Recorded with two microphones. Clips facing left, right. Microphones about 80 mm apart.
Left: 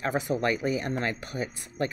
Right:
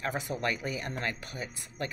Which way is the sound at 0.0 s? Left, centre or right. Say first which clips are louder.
Left 5 dB; left.